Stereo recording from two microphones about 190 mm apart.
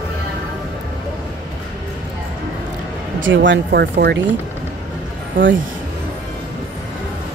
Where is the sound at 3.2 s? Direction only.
75° right (ahead or behind).